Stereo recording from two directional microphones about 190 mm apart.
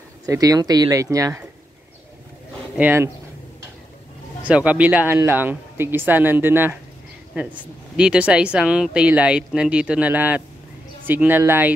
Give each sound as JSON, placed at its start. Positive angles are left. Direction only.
{"t": 0.3, "sound": "speech", "side_deg": -20}
{"t": 2.7, "sound": "speech", "side_deg": -10}
{"t": 4.4, "sound": "speech", "side_deg": -5}
{"t": 7.9, "sound": "speech", "side_deg": -5}